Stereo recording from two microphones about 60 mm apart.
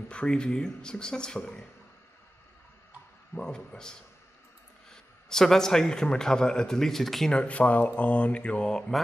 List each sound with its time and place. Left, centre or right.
0.1 s speech: centre
3.3 s a man's voice: centre
7.3 s speech: left